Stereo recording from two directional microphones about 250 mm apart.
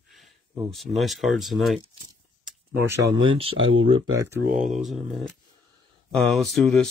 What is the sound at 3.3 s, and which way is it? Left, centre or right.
Speech, right.